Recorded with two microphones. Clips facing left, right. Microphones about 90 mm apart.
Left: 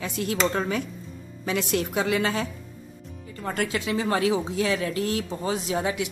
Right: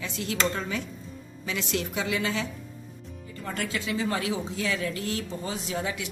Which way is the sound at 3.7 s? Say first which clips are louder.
Left 2 dB; 55° left (ahead or behind).